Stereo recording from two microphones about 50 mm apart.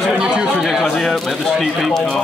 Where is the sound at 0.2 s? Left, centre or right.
Centre.